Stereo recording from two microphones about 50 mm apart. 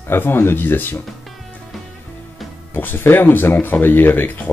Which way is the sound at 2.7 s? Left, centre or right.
Left.